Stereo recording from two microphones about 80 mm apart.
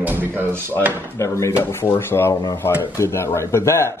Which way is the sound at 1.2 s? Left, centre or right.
Left.